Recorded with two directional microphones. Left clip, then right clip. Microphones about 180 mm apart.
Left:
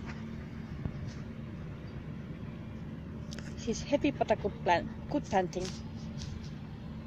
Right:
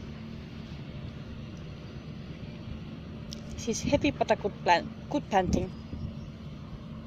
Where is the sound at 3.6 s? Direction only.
15° right (ahead or behind).